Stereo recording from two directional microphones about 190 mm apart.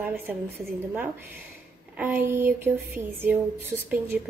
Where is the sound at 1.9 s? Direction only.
10° right (ahead or behind).